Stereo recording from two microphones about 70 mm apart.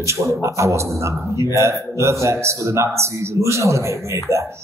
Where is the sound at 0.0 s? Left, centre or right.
Right.